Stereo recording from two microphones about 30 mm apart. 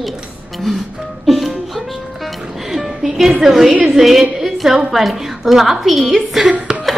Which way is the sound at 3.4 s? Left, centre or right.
Centre.